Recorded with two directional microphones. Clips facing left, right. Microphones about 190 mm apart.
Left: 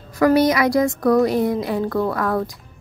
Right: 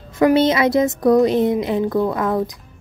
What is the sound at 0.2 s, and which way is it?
Speech, 25° right (ahead or behind).